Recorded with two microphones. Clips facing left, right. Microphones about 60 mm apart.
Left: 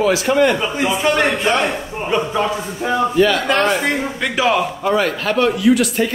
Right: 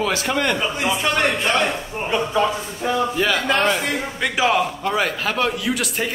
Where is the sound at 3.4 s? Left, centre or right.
Left.